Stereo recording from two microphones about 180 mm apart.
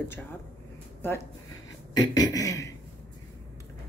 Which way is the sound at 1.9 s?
20° left (ahead or behind).